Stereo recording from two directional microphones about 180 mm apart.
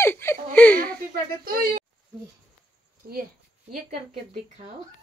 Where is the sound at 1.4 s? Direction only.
55° right (ahead or behind).